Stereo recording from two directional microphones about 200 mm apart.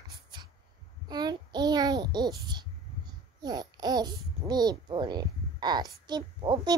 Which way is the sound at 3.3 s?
20° right (ahead or behind).